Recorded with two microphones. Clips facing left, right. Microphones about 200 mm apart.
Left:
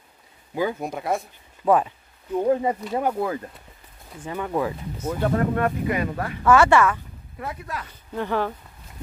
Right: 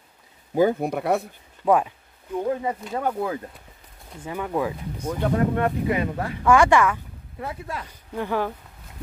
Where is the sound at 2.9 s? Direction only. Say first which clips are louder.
Even; 10° left (ahead or behind).